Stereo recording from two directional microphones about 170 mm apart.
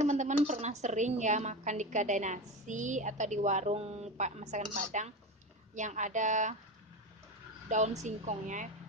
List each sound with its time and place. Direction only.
0.0 s a woman's voice: 45° right (ahead or behind)
7.6 s a woman's voice: 45° right (ahead or behind)